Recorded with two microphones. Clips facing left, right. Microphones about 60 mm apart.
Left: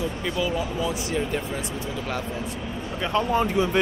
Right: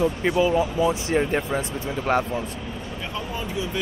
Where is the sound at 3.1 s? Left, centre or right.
Left.